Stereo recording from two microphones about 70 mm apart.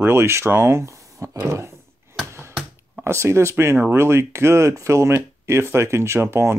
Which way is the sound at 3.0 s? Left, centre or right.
Right.